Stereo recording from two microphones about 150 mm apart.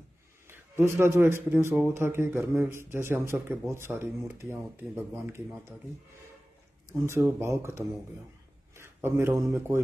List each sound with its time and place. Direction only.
0.5 s a man's voice: 15° right (ahead or behind)
6.9 s speech: 15° right (ahead or behind)
8.7 s a sound: 15° right (ahead or behind)